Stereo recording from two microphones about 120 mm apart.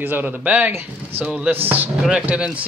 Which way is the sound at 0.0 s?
15° right (ahead or behind).